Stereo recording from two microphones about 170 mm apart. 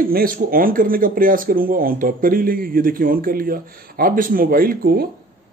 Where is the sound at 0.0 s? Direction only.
55° right (ahead or behind).